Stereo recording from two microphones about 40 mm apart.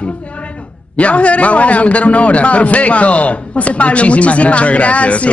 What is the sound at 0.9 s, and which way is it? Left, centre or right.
Speech, left.